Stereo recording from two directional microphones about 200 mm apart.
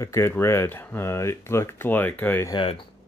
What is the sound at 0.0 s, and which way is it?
Speech, 15° left (ahead or behind).